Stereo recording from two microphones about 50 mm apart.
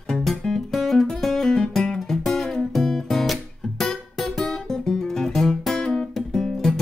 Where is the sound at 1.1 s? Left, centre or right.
Centre.